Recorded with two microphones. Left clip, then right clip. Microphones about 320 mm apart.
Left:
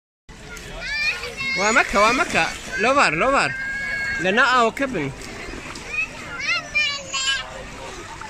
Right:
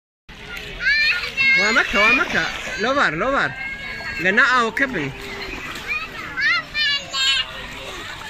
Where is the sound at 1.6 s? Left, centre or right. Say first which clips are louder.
Even; centre.